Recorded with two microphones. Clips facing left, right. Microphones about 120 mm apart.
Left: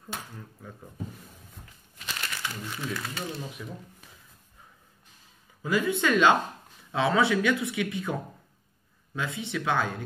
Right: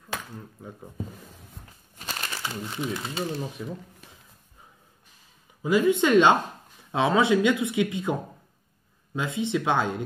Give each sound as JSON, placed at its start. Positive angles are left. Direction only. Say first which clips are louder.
{"t": 2.0, "sound": "crumpling", "louder": "right 2 dB", "side_deg": -40}
{"t": 2.8, "sound": "speech", "louder": "right 5 dB", "side_deg": -25}
{"t": 5.6, "sound": "speech", "louder": "right 5 dB", "side_deg": -15}